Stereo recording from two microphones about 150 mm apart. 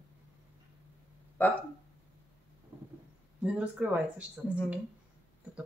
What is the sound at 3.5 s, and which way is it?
Speech, 10° right (ahead or behind).